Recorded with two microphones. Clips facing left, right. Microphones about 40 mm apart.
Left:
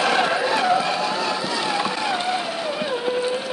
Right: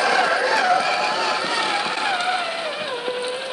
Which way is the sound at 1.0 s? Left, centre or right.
Right.